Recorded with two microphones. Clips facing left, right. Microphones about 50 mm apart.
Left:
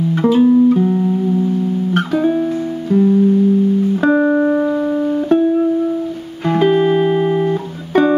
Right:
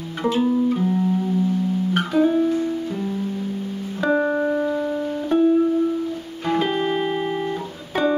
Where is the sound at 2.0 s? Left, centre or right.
Centre.